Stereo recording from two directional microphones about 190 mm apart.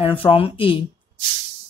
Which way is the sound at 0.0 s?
30° left (ahead or behind).